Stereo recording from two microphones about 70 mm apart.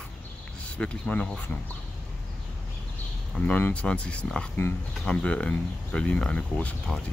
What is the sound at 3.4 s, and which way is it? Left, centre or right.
Speech, centre.